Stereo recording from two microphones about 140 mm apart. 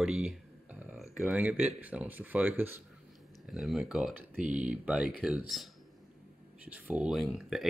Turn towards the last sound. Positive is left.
turn(degrees=0)  # may be behind; listen again after turning